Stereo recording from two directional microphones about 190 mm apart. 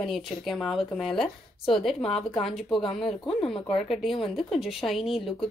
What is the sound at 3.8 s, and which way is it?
A woman's voice, centre (ahead or behind).